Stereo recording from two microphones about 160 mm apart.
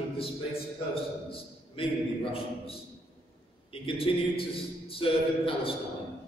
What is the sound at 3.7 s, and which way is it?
A man's voice, 35° left (ahead or behind).